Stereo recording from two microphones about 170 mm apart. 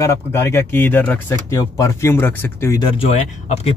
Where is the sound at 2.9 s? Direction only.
35° left (ahead or behind).